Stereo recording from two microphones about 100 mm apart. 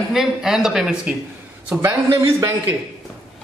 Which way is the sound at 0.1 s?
5° right (ahead or behind).